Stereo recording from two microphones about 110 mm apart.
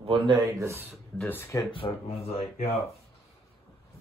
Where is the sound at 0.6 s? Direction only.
25° right (ahead or behind).